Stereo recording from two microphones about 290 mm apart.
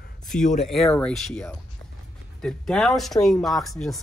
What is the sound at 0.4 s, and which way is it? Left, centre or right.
Speech, left.